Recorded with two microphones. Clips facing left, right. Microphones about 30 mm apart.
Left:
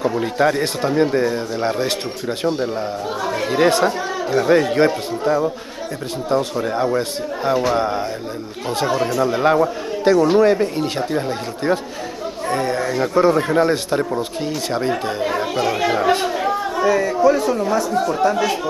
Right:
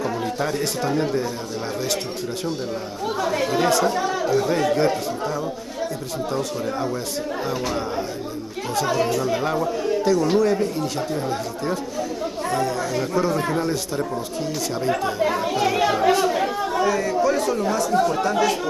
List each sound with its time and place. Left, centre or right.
0.0 s a man's voice: left
3.5 s a man's voice: left
8.9 s speech: centre
9.2 s speech: left
12.4 s chatter: left
12.9 s a man's voice: left
15.6 s speech: centre